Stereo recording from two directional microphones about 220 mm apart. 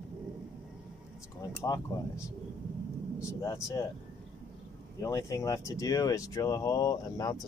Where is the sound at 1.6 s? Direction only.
15° left (ahead or behind).